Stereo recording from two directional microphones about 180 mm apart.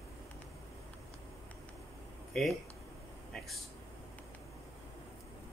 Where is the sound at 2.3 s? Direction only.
Centre (ahead or behind).